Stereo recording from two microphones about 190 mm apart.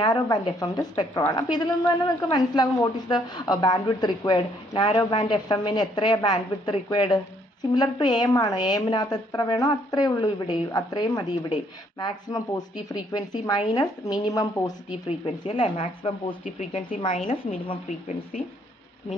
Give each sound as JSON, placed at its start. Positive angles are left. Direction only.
{"t": 0.0, "sound": "a woman's voice", "side_deg": 20}
{"t": 15.0, "sound": "a woman's voice", "side_deg": 30}
{"t": 16.4, "sound": "speech", "side_deg": 40}